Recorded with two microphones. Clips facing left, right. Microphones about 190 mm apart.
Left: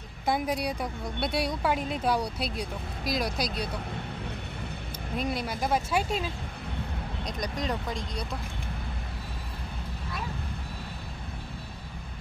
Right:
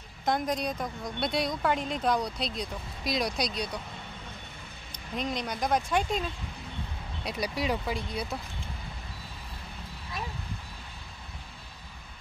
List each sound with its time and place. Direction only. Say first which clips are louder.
0.2 s a woman's voice: left 1 dB; 5° left (ahead or behind)
5.1 s speech: left 1 dB; 5° left (ahead or behind)
7.2 s speech: right 2 dB; 10° right (ahead or behind)